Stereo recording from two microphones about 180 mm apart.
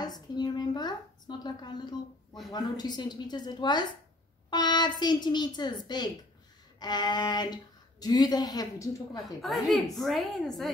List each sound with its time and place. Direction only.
0.0 s a woman's voice: 20° left (ahead or behind)
6.8 s speech: 25° left (ahead or behind)
9.2 s a woman's voice: centre (ahead or behind)